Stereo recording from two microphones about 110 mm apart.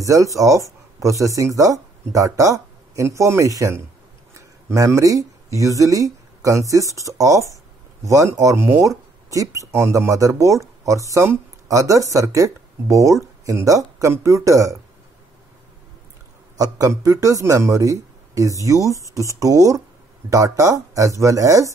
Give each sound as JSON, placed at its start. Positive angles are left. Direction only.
{"t": 0.0, "sound": "speech", "side_deg": -30}
{"t": 16.5, "sound": "a man's voice", "side_deg": -35}